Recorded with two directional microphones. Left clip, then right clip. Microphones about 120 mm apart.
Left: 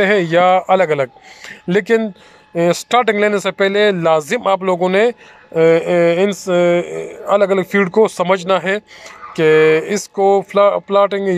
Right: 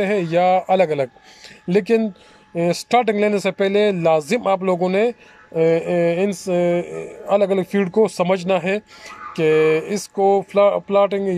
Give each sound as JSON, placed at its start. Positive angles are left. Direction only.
{"t": 0.0, "sound": "speech", "side_deg": -15}